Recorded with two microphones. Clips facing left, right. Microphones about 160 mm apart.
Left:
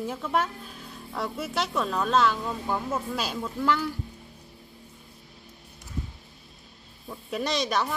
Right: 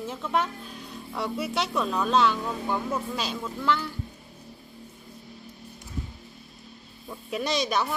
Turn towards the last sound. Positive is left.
turn(degrees=0)  # may be behind; listen again after turning